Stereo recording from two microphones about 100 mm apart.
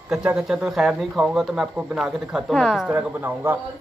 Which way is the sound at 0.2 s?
10° right (ahead or behind).